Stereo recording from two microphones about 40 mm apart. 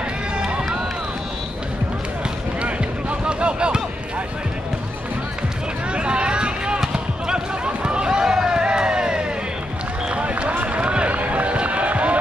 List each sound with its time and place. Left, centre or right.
2.6 s music: right
5.9 s run: right
10.1 s run: right